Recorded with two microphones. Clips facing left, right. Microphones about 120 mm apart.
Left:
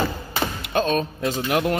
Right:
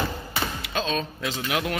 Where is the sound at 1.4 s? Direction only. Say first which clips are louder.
Left 6 dB; 40° left (ahead or behind).